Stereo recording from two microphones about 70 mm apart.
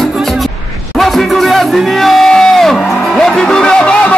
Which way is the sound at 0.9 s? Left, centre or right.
Centre.